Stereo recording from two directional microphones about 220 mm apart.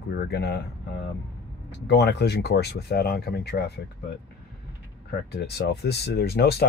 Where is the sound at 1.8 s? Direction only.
50° left (ahead or behind).